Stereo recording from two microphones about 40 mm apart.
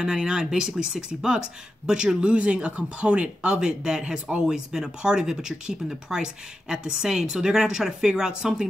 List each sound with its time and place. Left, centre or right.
0.0 s speech: centre